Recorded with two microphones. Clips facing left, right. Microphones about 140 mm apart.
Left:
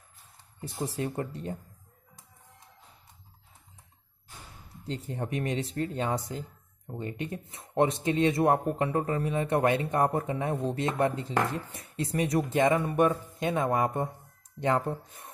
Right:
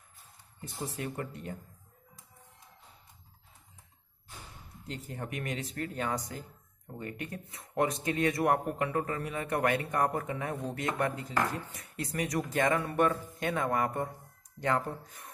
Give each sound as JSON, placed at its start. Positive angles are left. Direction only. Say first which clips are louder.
{"t": 0.8, "sound": "speech", "louder": "left 5 dB", "side_deg": 30}
{"t": 4.8, "sound": "speech", "louder": "left 5 dB", "side_deg": 30}